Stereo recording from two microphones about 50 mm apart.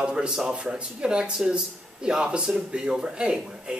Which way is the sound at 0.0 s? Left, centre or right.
Centre.